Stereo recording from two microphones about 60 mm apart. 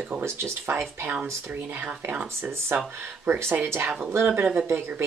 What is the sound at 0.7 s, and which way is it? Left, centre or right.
Speech, right.